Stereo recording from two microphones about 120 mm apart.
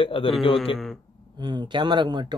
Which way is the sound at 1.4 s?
40° right (ahead or behind).